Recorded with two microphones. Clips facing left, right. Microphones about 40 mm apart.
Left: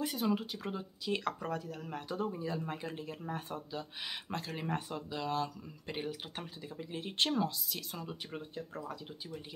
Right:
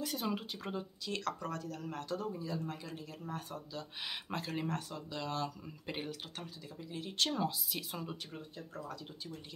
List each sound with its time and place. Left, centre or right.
0.1 s speech: centre
1.0 s speech: centre
2.1 s speech: left
4.0 s speech: centre
4.6 s speech: left
5.1 s speech: centre
6.3 s speech: left
7.3 s speech: centre
8.3 s speech: left
8.8 s speech: centre